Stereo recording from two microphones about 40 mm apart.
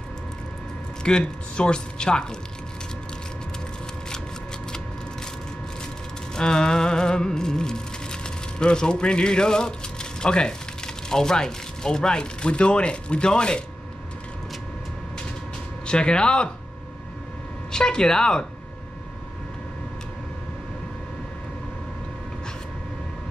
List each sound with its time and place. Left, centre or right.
1.0 s speech: left
6.3 s music: centre
15.9 s speech: left
17.6 s speech: centre